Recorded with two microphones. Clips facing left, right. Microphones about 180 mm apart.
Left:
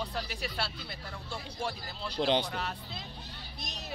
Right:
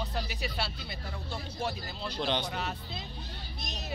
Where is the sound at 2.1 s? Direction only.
30° left (ahead or behind).